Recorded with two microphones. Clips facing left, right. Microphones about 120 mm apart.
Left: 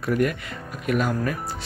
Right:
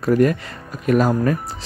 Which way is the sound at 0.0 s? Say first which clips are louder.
Right 7 dB; 35° right (ahead or behind).